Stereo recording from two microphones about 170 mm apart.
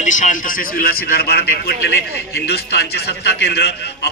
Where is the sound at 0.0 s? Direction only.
45° left (ahead or behind).